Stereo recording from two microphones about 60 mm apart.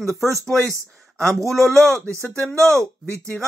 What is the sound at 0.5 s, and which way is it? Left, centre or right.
Speech, centre.